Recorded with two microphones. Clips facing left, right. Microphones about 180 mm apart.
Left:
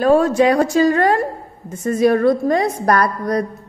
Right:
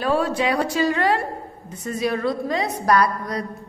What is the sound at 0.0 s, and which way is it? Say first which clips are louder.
A woman's voice: left 8 dB; 45° left (ahead or behind).